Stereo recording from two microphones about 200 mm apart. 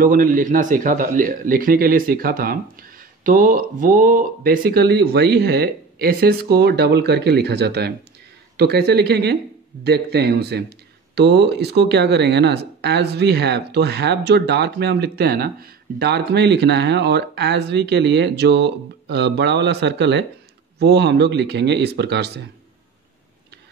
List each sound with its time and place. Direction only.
0.0 s a man's voice: 45° right (ahead or behind)